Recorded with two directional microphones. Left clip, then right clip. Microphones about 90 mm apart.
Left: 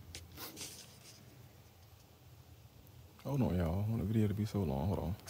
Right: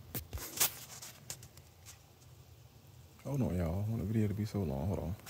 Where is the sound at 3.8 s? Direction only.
35° left (ahead or behind).